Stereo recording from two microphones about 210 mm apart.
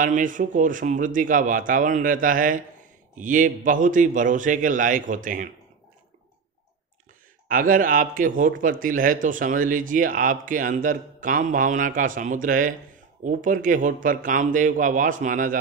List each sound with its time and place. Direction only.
0.0 s speech: 40° right (ahead or behind)
7.4 s speech: 40° right (ahead or behind)